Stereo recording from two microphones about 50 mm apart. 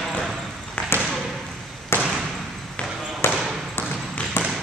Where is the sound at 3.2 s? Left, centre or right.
Left.